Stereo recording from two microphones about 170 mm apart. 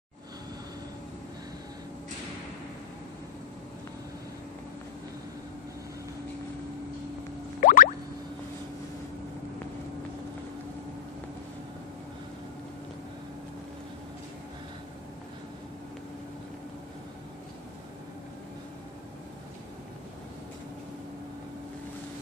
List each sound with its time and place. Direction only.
7.6 s music: 55° left (ahead or behind)